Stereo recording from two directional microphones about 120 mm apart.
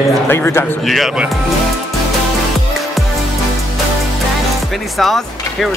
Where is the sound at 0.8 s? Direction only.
Centre (ahead or behind).